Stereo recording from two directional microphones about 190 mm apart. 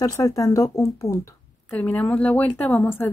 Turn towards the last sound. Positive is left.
turn(degrees=10)  # may be behind; listen again after turning